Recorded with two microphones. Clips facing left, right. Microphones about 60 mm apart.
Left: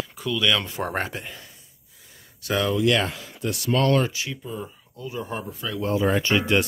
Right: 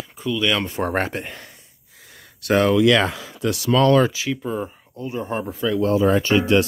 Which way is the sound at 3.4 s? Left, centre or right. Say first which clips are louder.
Right 5 dB; right.